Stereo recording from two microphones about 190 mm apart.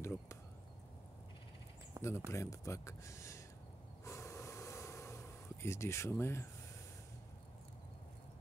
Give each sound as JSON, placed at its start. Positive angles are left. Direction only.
{"t": 0.0, "sound": "chop", "side_deg": 15}
{"t": 2.0, "sound": "speech", "side_deg": 15}
{"t": 4.0, "sound": "snort", "side_deg": 15}